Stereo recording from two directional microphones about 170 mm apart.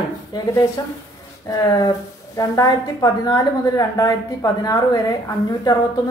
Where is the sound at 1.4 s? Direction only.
25° left (ahead or behind).